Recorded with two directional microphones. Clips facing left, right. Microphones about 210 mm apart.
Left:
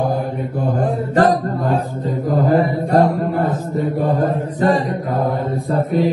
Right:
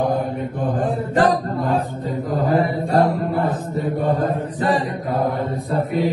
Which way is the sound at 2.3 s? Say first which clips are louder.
Left 3 dB; 50° left (ahead or behind).